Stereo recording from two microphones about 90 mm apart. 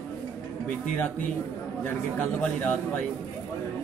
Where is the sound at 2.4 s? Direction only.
15° left (ahead or behind).